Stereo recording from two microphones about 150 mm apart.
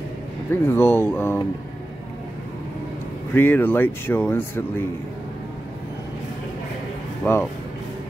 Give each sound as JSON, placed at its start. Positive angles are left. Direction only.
{"t": 0.7, "sound": "speech", "side_deg": 15}
{"t": 3.3, "sound": "speech", "side_deg": 15}
{"t": 7.2, "sound": "speech", "side_deg": 15}